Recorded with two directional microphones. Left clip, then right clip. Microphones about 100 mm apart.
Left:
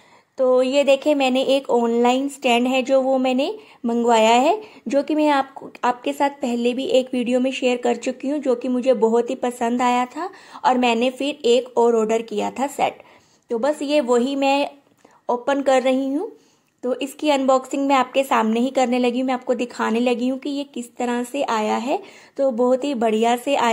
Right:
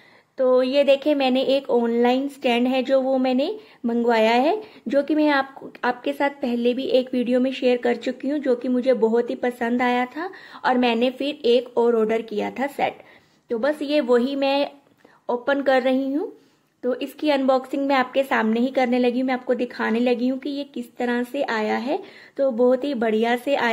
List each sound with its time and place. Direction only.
0.4 s a woman's voice: 40° left (ahead or behind)